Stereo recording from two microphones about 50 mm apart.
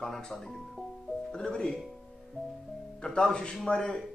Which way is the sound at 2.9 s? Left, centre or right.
Centre.